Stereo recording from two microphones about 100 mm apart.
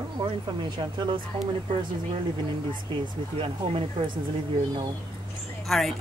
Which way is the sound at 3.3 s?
65° right (ahead or behind).